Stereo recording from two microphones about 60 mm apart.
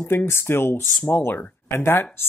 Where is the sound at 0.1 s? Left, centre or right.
Left.